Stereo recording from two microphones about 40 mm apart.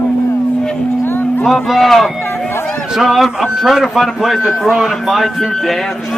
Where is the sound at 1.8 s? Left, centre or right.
Centre.